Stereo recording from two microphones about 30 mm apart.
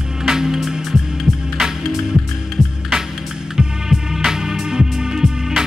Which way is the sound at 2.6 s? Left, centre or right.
Centre.